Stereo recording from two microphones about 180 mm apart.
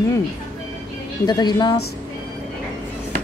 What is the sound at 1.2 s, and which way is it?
Speech, 25° left (ahead or behind).